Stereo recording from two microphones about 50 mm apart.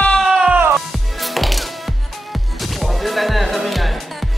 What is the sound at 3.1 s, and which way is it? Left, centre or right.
Music, centre.